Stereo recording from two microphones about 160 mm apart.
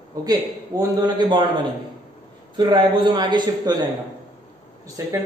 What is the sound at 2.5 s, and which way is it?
A man's voice, 30° right (ahead or behind).